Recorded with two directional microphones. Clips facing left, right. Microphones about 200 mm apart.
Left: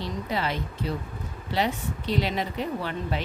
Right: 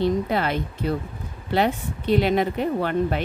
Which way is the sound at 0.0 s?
55° right (ahead or behind).